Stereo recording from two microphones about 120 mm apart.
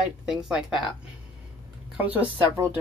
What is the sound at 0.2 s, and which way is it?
Speech, 5° right (ahead or behind).